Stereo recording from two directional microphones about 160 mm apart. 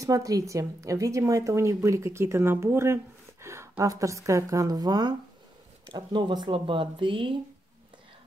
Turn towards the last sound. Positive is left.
turn(degrees=-30)  # may be behind; listen again after turning